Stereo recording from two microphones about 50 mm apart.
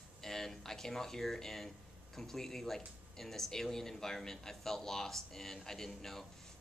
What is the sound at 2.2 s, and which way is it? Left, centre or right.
Speech, centre.